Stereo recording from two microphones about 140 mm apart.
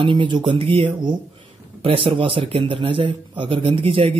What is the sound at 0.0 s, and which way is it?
A man's voice, 35° right (ahead or behind).